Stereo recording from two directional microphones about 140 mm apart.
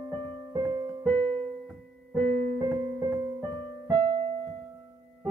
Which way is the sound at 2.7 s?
15° right (ahead or behind).